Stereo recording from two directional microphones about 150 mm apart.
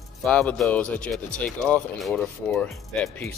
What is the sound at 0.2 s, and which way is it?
Speech, 5° left (ahead or behind).